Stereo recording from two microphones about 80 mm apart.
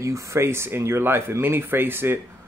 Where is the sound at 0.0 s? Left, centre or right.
Right.